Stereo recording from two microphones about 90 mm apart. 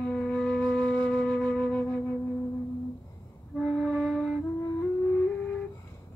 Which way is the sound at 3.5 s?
5° left (ahead or behind).